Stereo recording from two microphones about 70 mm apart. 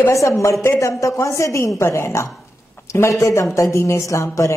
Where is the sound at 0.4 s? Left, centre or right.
Left.